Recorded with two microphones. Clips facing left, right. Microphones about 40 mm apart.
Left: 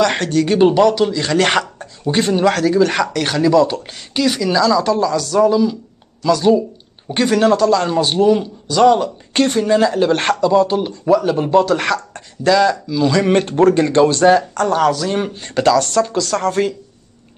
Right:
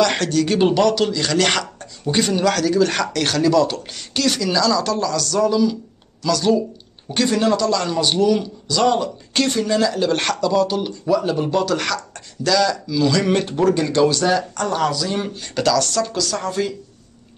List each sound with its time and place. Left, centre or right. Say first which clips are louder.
0.0 s speech: left 2 dB; centre
7.2 s speech: left 5 dB; left
7.8 s speech: left 4 dB; left
13.3 s speech: left 5 dB; left
14.5 s speech: left 5 dB; left
15.3 s speech: left 5 dB; left